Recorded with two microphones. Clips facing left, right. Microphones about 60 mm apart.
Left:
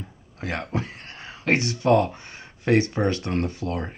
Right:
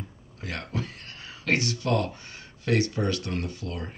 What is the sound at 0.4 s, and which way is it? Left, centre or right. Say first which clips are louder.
Speech: left 5 dB; left.